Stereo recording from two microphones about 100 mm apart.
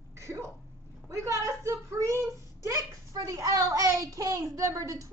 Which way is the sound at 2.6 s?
35° right (ahead or behind).